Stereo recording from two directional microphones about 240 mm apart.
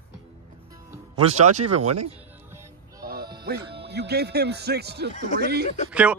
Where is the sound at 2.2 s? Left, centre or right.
Centre.